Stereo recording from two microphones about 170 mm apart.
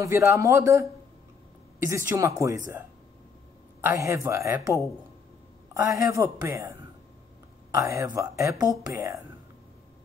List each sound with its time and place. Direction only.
0.0 s speech: 15° right (ahead or behind)
1.9 s speech: 15° right (ahead or behind)
3.8 s speech: 20° right (ahead or behind)